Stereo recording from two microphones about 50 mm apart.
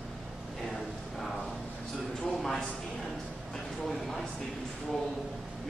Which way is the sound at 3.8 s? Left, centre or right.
Centre.